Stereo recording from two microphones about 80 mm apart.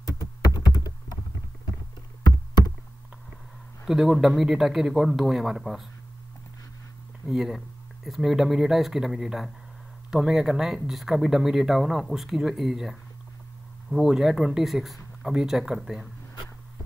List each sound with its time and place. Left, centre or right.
0.6 s computer keyboard: left
3.8 s speech: centre
7.2 s speech: centre